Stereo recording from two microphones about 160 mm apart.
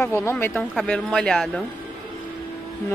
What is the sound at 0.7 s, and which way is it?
Speech, 5° left (ahead or behind).